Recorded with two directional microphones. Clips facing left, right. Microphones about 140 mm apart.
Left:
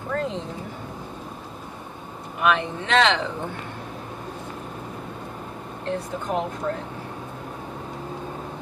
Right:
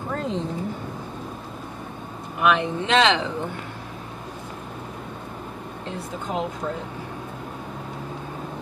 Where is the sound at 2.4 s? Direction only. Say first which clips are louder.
Right 2 dB; 20° right (ahead or behind).